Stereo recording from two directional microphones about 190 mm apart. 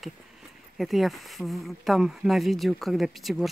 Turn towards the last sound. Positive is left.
turn(degrees=0)  # may be behind; listen again after turning